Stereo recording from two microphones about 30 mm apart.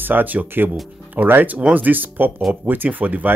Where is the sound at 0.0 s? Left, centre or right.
Right.